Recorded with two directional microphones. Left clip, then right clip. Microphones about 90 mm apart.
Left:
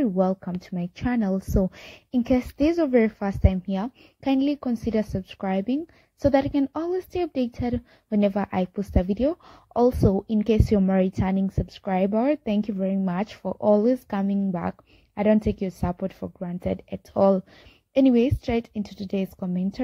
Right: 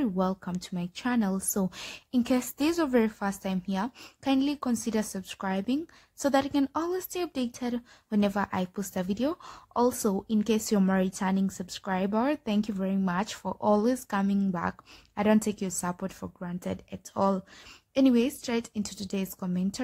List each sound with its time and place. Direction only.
0.2 s a woman's voice: 30° left (ahead or behind)
17.9 s speech: 35° left (ahead or behind)